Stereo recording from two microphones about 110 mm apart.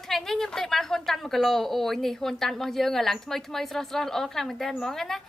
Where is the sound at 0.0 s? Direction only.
5° left (ahead or behind).